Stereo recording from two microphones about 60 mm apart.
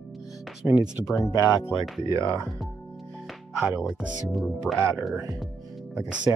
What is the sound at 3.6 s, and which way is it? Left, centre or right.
Speech, centre.